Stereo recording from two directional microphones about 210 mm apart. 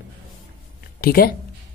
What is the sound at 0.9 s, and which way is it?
Speech, 45° left (ahead or behind).